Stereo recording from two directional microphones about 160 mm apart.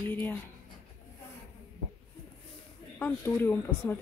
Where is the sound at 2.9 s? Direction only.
15° left (ahead or behind).